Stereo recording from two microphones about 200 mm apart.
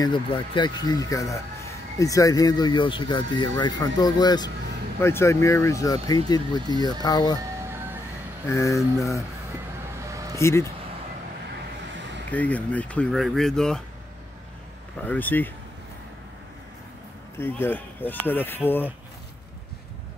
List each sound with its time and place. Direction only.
0.0 s speech: 25° left (ahead or behind)
8.5 s speech: 15° left (ahead or behind)
9.9 s vehicle: 15° right (ahead or behind)
10.4 s speech: 15° left (ahead or behind)
12.3 s speech: 5° left (ahead or behind)
15.0 s speech: 10° left (ahead or behind)
17.4 s speech: 10° left (ahead or behind)